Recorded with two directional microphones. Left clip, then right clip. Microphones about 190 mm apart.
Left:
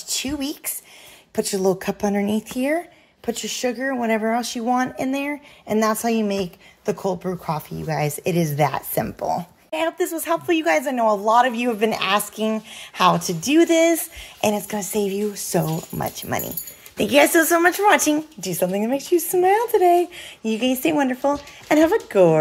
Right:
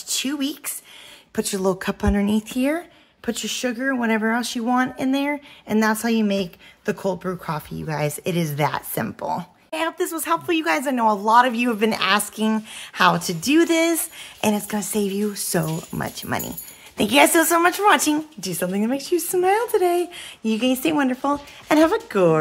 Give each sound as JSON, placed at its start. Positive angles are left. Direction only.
{"t": 0.1, "sound": "speech", "side_deg": -5}